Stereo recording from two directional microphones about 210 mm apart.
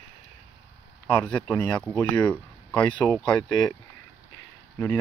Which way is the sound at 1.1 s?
5° left (ahead or behind).